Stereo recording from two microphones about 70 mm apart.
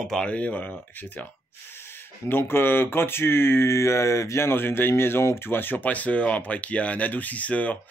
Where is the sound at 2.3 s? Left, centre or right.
Left.